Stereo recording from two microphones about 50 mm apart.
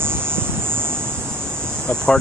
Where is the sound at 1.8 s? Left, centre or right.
Centre.